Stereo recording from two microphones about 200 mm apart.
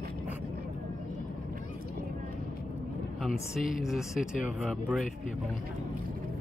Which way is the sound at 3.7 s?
Centre (ahead or behind).